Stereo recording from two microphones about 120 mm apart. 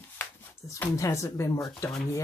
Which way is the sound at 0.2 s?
20° left (ahead or behind).